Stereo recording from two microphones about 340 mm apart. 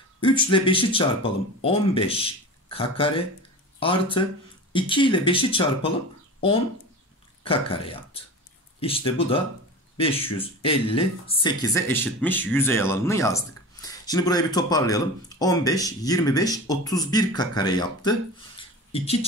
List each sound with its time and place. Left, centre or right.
0.5 s speech: centre
7.4 s speech: centre
18.6 s a sound: centre